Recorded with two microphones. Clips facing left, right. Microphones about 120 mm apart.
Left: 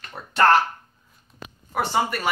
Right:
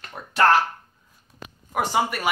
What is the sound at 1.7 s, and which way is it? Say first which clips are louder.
Speech: even; 10° right (ahead or behind).